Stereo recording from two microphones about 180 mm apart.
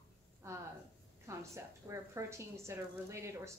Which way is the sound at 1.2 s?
15° right (ahead or behind).